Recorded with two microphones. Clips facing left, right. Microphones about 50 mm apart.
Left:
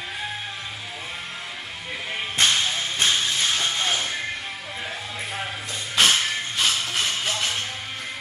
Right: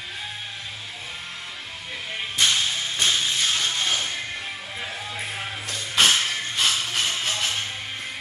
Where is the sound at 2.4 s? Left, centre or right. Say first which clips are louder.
Left 1 dB; left.